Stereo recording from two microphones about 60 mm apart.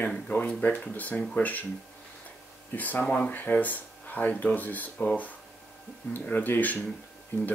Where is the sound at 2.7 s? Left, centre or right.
Left.